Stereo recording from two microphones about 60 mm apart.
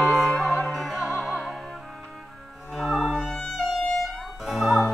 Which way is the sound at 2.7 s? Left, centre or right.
Centre.